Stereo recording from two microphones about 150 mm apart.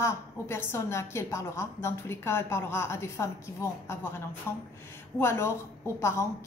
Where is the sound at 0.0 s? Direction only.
15° left (ahead or behind).